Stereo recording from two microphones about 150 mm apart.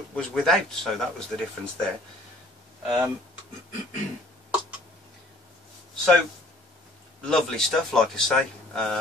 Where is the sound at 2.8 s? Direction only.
5° right (ahead or behind).